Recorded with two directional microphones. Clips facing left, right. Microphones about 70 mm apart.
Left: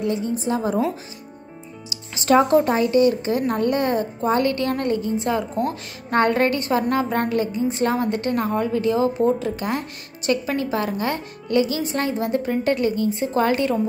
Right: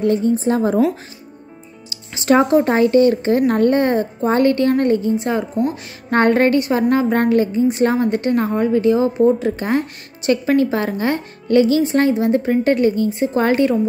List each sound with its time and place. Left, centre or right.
0.0 s a woman's voice: right
2.1 s a woman's voice: right
3.7 s a woman's voice: right
6.0 s a woman's voice: right